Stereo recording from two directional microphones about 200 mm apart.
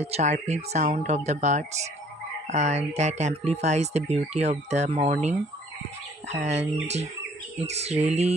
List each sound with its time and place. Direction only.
0.0 s speech: 35° right (ahead or behind)
6.4 s speech: 35° right (ahead or behind)